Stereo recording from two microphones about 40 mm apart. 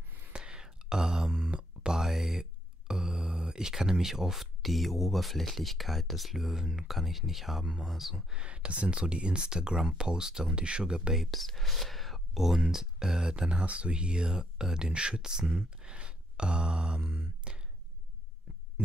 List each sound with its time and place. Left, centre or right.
0.3 s whispering: centre
1.6 s a sound: centre
2.9 s speech: centre
7.6 s speech: centre
8.3 s speech: right
10.5 s speech: right
11.1 s speech: centre
13.3 s speech: right
15.5 s a sound: right